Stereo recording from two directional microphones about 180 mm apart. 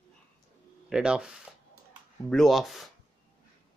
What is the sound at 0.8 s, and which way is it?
Speech, 5° right (ahead or behind).